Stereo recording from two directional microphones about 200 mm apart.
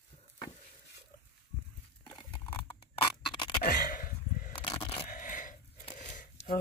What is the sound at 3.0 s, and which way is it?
Scratch, 20° left (ahead or behind).